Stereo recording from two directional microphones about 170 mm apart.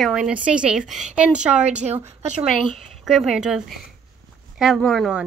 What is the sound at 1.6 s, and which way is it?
Speech, 40° right (ahead or behind).